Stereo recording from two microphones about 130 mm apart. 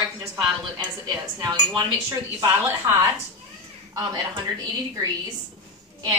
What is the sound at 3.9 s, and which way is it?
A woman's voice, 30° right (ahead or behind).